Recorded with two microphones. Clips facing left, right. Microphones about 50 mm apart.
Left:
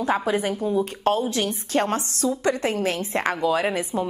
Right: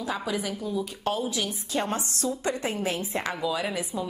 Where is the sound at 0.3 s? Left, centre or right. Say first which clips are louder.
Left 7 dB; left.